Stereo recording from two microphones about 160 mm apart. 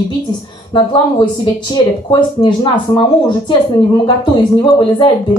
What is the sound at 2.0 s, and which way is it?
A woman's voice, 30° left (ahead or behind).